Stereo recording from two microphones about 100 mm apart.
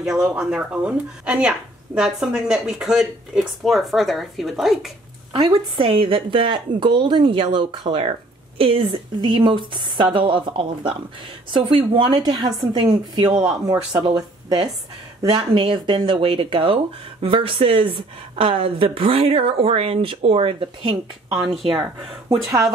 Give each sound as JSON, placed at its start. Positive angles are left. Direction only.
{"t": 0.0, "sound": "speech", "side_deg": -5}
{"t": 5.8, "sound": "speech", "side_deg": -60}
{"t": 8.0, "sound": "speech", "side_deg": -70}